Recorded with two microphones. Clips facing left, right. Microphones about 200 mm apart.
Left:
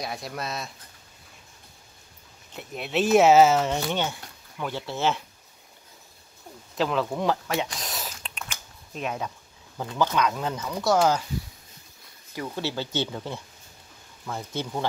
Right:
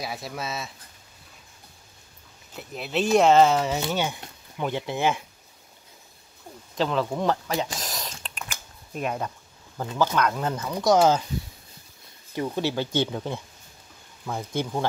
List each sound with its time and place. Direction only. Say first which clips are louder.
0.0 s speech: even; centre (ahead or behind)
2.5 s speech: left 1 dB; centre (ahead or behind)
3.9 s speech: right 1 dB; 15° right (ahead or behind)
6.8 s a sound: right 1 dB; centre (ahead or behind)
9.8 s speech: right 1 dB; 5° right (ahead or behind)
12.4 s speech: right 4 dB; 15° right (ahead or behind)